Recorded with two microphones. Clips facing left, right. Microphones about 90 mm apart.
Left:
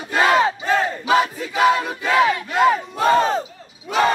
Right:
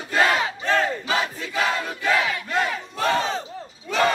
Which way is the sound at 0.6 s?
10° left (ahead or behind).